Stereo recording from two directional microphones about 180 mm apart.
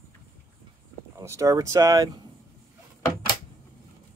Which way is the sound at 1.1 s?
15° right (ahead or behind).